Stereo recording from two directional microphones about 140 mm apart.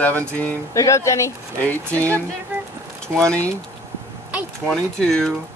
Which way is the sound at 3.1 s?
10° left (ahead or behind).